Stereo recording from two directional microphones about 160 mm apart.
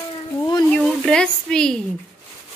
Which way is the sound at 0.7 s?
5° left (ahead or behind).